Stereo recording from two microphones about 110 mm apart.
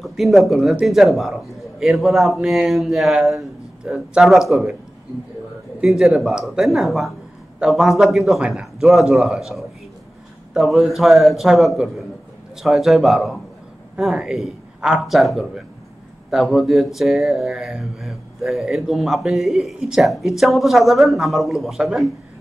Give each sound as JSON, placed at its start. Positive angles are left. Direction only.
{"t": 0.0, "sound": "speech", "side_deg": 0}
{"t": 5.8, "sound": "speech", "side_deg": -5}